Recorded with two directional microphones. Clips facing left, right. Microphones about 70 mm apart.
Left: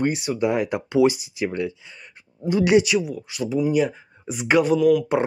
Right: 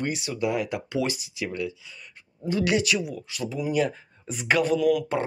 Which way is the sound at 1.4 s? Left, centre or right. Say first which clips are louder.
Left 5 dB; left.